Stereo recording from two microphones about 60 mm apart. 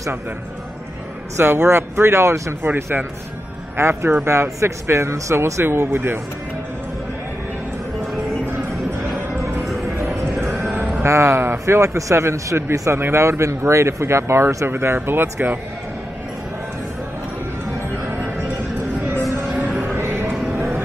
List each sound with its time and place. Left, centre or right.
1.3 s speech: right
2.6 s speech: right
9.1 s music: centre
10.8 s music: right
11.1 s speech: right
12.7 s speech: right
13.0 s speech: right
14.7 s speech: right
20.0 s music: right